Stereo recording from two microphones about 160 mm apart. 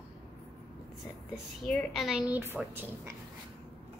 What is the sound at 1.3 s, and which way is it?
A woman's voice, 5° left (ahead or behind).